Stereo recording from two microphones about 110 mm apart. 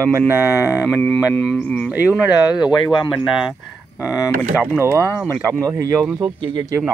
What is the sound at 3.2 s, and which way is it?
Speech, 5° right (ahead or behind).